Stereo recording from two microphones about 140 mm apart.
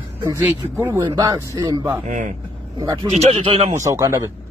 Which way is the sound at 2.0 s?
65° right (ahead or behind).